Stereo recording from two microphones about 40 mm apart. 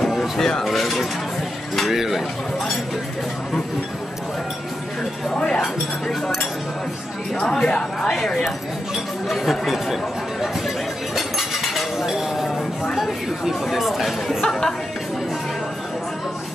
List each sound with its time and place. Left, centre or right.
0.0 s a sound: centre
0.7 s speech: centre
7.6 s speech: left
8.5 s speech: centre
11.1 s a sound: centre
13.7 s speech: centre
14.4 s speech: centre